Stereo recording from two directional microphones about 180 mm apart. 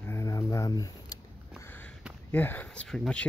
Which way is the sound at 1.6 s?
10° left (ahead or behind).